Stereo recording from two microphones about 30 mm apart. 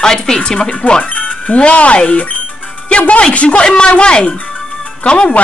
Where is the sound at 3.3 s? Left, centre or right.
Left.